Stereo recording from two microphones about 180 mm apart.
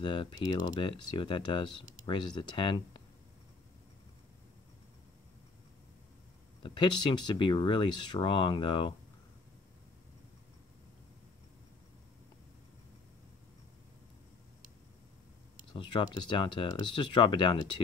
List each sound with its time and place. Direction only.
0.0 s speech: 25° left (ahead or behind)
6.6 s speech: 25° left (ahead or behind)
15.7 s speech: 25° left (ahead or behind)